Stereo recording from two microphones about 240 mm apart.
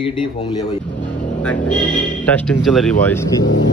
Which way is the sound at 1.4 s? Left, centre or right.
Centre.